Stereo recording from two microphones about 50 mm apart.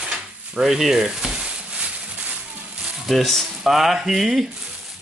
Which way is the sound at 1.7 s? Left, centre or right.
Right.